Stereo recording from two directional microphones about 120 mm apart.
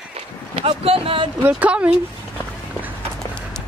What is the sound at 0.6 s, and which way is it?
Speech, 55° right (ahead or behind).